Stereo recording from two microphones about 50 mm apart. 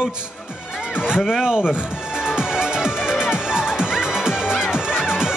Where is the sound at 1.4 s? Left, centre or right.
Centre.